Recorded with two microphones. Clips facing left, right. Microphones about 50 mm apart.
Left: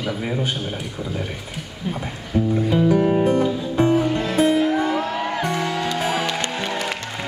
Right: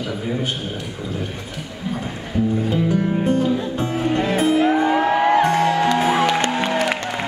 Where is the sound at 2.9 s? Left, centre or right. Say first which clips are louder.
Left 4 dB; left.